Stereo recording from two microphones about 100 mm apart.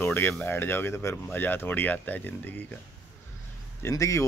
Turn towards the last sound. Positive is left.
turn(degrees=30)  # may be behind; listen again after turning